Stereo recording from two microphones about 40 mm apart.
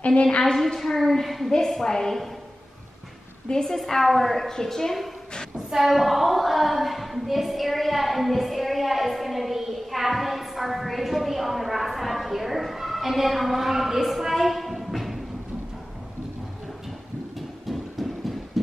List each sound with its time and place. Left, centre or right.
0.0 s a woman's voice: left
0.4 s a woman's voice: centre
3.4 s a woman's voice: left
3.7 s a woman's voice: centre
5.7 s a woman's voice: centre
17.4 s a sound: centre